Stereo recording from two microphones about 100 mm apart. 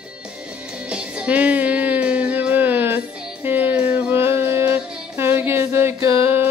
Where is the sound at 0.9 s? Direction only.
10° right (ahead or behind); by 6.1 s 25° right (ahead or behind).